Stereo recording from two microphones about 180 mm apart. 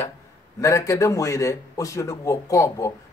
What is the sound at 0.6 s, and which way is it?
Speech, 15° left (ahead or behind).